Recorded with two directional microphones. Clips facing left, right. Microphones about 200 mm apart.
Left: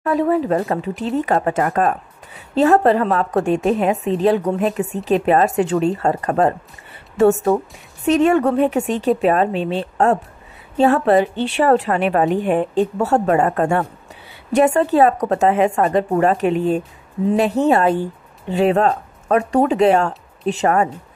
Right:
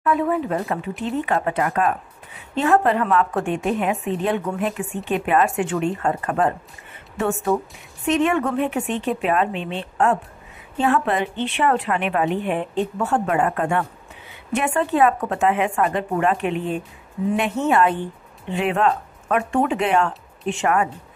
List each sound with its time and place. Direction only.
0.0 s speech: 35° left (ahead or behind)